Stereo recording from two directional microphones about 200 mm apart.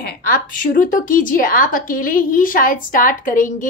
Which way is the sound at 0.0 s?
50° left (ahead or behind).